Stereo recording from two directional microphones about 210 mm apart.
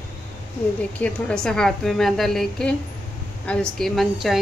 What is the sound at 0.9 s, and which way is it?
A woman's voice, 5° left (ahead or behind).